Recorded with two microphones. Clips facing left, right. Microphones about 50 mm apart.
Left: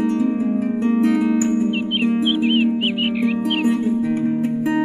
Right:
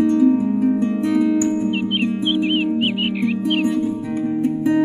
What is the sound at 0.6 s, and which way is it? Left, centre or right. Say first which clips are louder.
Music: even; left.